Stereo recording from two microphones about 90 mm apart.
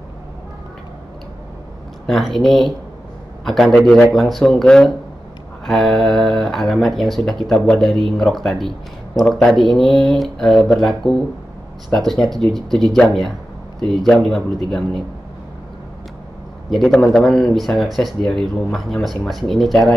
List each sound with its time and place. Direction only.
2.0 s speech: centre (ahead or behind)
16.7 s speech: 5° left (ahead or behind)